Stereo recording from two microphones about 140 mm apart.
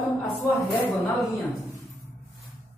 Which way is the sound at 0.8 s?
20° left (ahead or behind).